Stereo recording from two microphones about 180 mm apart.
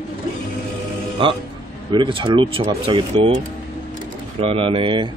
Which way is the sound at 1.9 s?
25° right (ahead or behind).